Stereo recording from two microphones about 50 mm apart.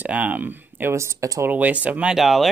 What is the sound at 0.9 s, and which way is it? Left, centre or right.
Speech, right.